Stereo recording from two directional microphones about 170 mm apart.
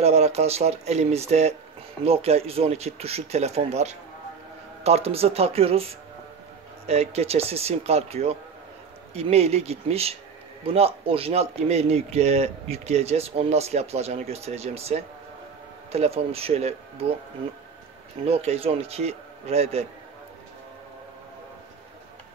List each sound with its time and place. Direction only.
0.0 s speech: 40° right (ahead or behind)
18.2 s speech: 40° right (ahead or behind)